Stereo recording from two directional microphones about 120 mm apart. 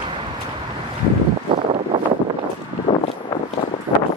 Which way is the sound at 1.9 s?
40° right (ahead or behind).